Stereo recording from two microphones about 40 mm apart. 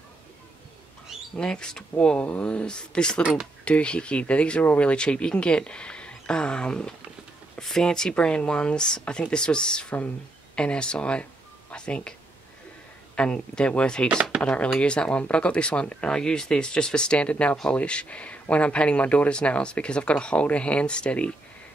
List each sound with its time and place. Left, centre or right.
1.3 s speech: centre